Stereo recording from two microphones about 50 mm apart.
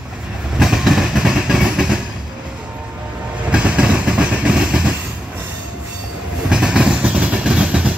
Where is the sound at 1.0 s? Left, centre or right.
Centre.